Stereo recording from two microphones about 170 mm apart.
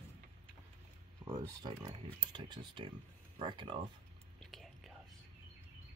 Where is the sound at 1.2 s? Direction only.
20° right (ahead or behind).